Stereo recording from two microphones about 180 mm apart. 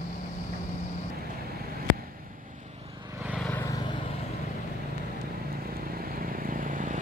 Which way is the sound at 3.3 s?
5° left (ahead or behind).